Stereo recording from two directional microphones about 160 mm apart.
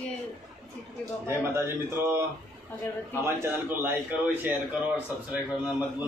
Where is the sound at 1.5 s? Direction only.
15° right (ahead or behind).